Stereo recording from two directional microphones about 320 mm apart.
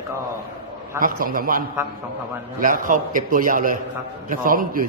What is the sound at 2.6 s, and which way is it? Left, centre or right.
A man's voice, right.